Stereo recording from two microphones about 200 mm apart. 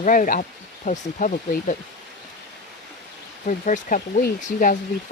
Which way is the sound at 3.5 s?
40° left (ahead or behind).